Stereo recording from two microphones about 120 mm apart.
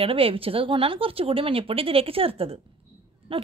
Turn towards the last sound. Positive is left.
turn(degrees=-50)  # may be behind; listen again after turning